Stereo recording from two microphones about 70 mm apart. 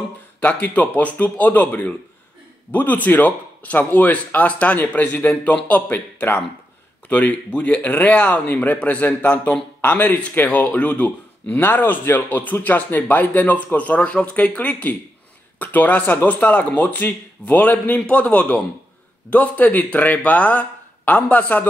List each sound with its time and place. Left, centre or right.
0.4 s speech: left